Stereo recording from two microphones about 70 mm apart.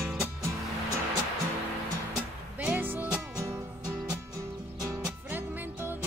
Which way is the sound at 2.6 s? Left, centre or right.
Right.